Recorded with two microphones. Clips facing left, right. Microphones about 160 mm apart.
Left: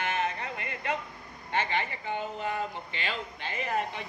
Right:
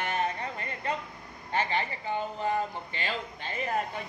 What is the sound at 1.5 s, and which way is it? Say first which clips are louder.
A woman's voice: right 1 dB; 40° right (ahead or behind).